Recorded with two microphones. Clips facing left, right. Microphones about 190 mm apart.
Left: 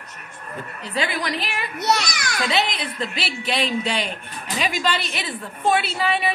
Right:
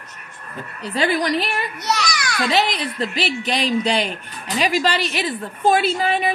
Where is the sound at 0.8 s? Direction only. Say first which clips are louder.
Right 6 dB; 40° right (ahead or behind).